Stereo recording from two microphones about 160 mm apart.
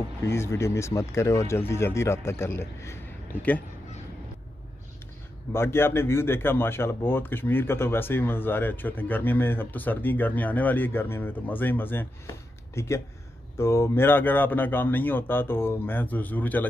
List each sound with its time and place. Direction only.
0.3 s speech: 15° left (ahead or behind)
5.5 s speech: 15° left (ahead or behind)